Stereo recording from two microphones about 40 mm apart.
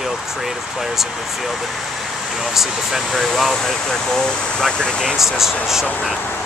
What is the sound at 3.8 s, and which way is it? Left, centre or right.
Speech, centre.